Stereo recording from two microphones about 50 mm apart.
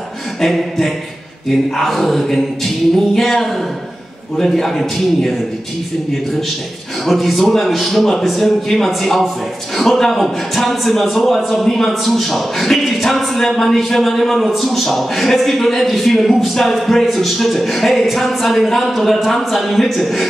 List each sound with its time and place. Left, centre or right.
0.4 s a man's voice: centre
7.1 s a man's voice: centre